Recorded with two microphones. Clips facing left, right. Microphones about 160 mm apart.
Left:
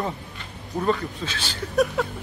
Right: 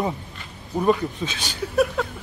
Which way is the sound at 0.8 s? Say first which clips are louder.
Right 4 dB; 15° right (ahead or behind).